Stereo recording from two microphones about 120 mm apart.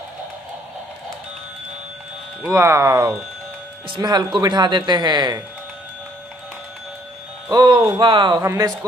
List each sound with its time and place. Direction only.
2.4 s speech: 20° right (ahead or behind)
3.9 s speech: 40° right (ahead or behind)
7.5 s speech: 40° right (ahead or behind)
8.4 s speech: 25° right (ahead or behind)